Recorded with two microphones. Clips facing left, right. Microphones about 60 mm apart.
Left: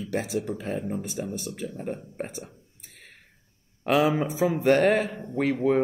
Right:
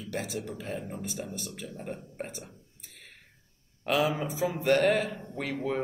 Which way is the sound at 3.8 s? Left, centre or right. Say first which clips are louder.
Left 5 dB; left.